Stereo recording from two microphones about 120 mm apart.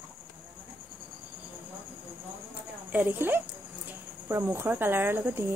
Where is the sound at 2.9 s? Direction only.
15° right (ahead or behind).